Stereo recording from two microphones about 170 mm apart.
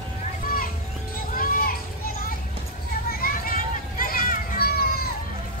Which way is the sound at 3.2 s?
55° left (ahead or behind).